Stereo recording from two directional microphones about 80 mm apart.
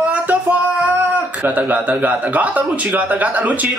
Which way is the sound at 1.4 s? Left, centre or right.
Right.